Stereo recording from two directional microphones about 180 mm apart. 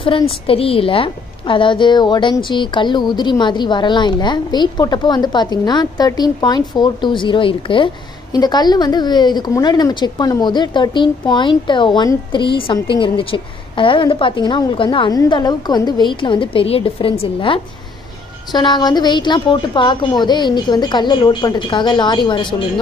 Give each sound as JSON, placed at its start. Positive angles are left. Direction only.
{"t": 0.3, "sound": "a woman's voice", "side_deg": 30}